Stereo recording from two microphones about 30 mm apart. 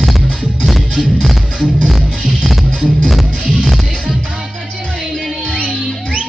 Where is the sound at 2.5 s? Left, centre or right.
Centre.